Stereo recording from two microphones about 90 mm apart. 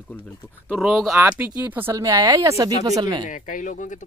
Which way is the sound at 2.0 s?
40° right (ahead or behind).